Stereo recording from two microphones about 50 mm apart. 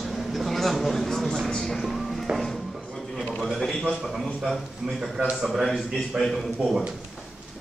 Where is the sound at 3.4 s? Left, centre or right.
Centre.